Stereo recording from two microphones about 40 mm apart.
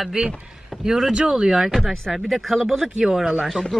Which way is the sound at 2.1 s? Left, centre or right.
Centre.